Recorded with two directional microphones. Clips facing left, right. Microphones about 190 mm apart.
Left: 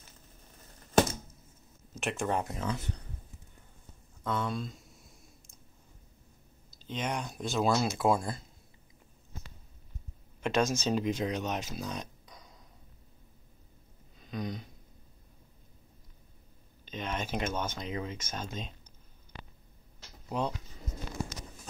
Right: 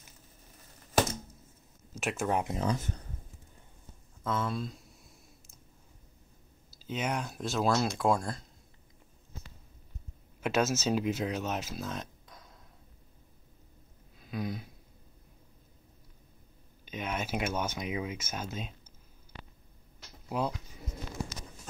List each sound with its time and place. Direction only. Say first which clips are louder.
2.0 s speech: right 1 dB; 5° right (ahead or behind)
2.6 s speech: right 4 dB; 40° right (ahead or behind)
4.2 s a sound: even; centre (ahead or behind)
6.7 s speech: right 1 dB; 5° right (ahead or behind)
10.4 s speech: even; 5° right (ahead or behind)
14.2 s a sound: right 1 dB; 5° right (ahead or behind)
16.8 s speech: right 1 dB; 10° right (ahead or behind)
20.2 s speech: even; 5° right (ahead or behind)